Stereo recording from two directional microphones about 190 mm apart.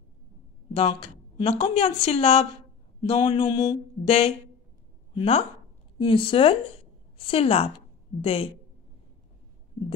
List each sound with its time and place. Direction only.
0.7 s a woman's voice: 30° left (ahead or behind)